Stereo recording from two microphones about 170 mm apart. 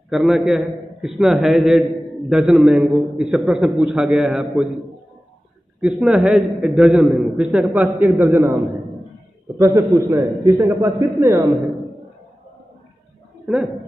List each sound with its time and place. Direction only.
0.1 s a man's voice: centre (ahead or behind)
5.8 s a man's voice: centre (ahead or behind)
9.9 s a man's voice: 15° right (ahead or behind)
13.5 s a man's voice: centre (ahead or behind)